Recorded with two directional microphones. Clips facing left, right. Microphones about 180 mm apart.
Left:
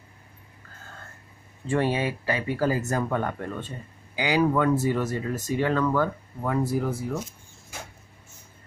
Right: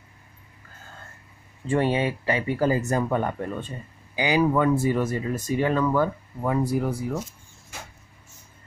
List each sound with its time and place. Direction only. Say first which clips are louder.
1.7 s speech: right 2 dB; 20° right (ahead or behind)